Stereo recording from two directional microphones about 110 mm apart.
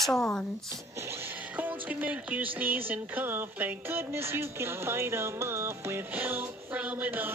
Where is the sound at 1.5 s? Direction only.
15° right (ahead or behind).